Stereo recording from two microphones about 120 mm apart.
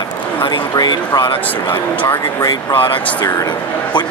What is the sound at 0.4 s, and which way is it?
A man's voice, 40° left (ahead or behind).